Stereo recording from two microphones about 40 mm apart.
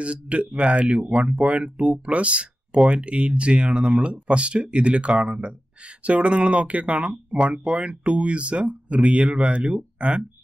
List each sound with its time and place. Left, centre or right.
0.0 s speech: right